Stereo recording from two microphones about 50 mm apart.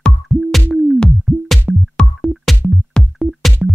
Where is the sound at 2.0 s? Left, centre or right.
Centre.